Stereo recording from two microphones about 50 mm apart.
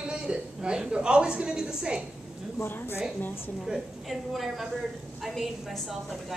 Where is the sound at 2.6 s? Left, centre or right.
Left.